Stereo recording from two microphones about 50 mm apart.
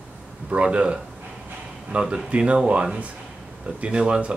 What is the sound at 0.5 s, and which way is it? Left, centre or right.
Speech, right.